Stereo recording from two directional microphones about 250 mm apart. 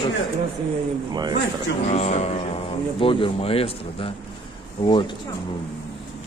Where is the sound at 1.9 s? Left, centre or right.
Left.